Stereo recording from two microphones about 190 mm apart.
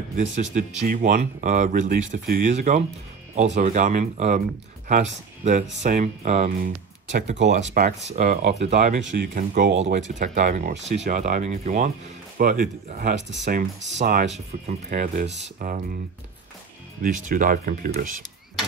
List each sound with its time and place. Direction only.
0.2 s speech: 40° right (ahead or behind)
17.0 s speech: 45° right (ahead or behind)